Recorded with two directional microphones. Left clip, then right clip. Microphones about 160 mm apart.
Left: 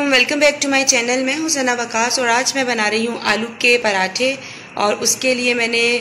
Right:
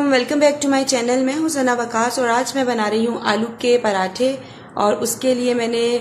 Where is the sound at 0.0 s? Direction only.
20° right (ahead or behind).